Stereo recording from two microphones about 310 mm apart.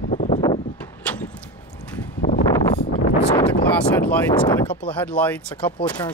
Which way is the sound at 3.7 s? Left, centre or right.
Centre.